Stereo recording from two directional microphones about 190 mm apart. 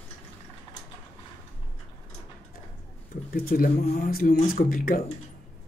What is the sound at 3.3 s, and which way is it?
Speech, 50° left (ahead or behind).